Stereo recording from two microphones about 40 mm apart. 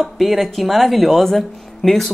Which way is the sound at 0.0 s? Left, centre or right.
Centre.